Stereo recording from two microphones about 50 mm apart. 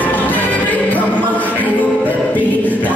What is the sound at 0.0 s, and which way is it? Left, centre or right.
Music, left.